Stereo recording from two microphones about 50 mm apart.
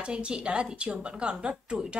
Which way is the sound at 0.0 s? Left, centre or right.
Right.